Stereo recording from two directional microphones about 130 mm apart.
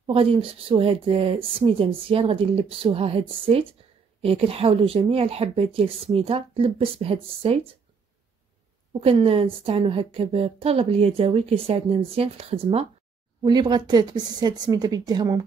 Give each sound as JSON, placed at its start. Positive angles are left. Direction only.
{"t": 0.0, "sound": "speech", "side_deg": -45}
{"t": 9.0, "sound": "speech", "side_deg": -50}
{"t": 13.4, "sound": "speech", "side_deg": -35}